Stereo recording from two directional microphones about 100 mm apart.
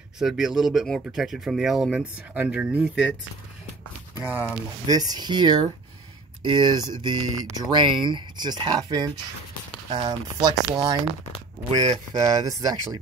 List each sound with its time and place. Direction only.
0.2 s speech: 5° right (ahead or behind)
4.8 s speech: 40° right (ahead or behind)
11.7 s speech: 40° right (ahead or behind)